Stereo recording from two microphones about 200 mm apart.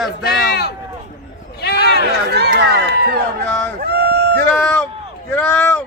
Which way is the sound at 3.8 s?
55° right (ahead or behind).